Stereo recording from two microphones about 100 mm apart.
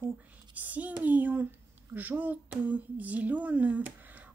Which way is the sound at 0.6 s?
15° right (ahead or behind).